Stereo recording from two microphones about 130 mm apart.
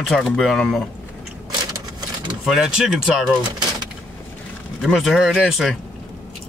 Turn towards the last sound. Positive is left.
turn(degrees=0)  # may be behind; listen again after turning